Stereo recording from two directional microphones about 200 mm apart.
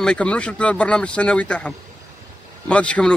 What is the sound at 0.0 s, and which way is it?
A man's voice, 5° left (ahead or behind).